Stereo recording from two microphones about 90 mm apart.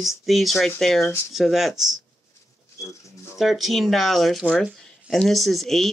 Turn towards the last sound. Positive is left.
turn(degrees=0)  # may be behind; listen again after turning